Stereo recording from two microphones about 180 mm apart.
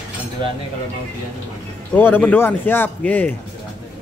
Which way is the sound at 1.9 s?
10° left (ahead or behind).